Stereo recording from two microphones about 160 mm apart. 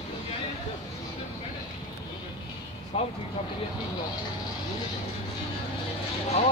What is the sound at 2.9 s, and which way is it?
Speech, 40° left (ahead or behind).